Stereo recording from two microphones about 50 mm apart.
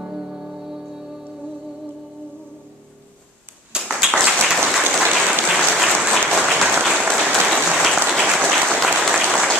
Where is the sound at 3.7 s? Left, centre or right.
Centre.